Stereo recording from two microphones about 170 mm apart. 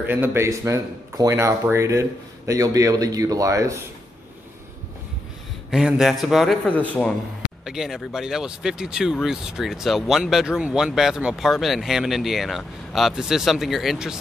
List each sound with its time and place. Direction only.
0.0 s speech: 10° right (ahead or behind)
5.7 s speech: 5° right (ahead or behind)
7.6 s speech: centre (ahead or behind)